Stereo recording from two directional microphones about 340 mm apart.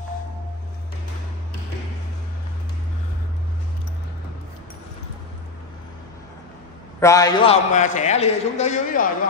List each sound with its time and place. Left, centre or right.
7.0 s a man's voice: centre